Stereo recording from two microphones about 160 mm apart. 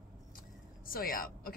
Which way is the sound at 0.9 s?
65° left (ahead or behind).